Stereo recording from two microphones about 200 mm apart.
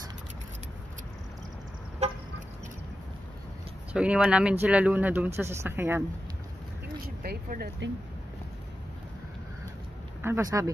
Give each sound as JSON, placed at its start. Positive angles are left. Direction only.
{"t": 3.9, "sound": "speech", "side_deg": -5}
{"t": 7.2, "sound": "speech", "side_deg": -50}
{"t": 10.2, "sound": "speech", "side_deg": -15}